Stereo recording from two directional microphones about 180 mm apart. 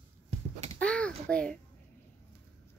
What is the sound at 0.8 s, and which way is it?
Speech, 5° left (ahead or behind).